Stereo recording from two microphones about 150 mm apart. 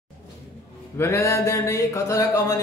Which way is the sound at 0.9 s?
20° left (ahead or behind).